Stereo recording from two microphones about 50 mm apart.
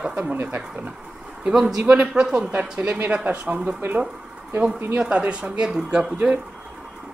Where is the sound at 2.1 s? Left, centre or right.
Centre.